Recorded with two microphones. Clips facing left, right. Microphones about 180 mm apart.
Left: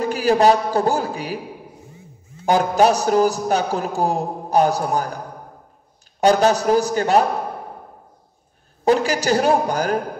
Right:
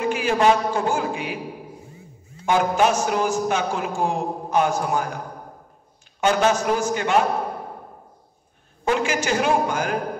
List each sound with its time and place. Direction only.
0.0 s a man's voice: 35° left (ahead or behind)
2.4 s a man's voice: 35° left (ahead or behind)
6.2 s a man's voice: 35° left (ahead or behind)
8.8 s a man's voice: 35° left (ahead or behind)